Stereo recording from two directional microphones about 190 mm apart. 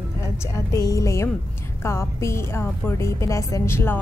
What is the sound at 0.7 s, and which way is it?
A woman's voice, 15° left (ahead or behind).